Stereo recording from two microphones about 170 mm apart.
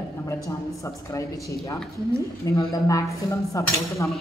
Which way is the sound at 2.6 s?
20° left (ahead or behind).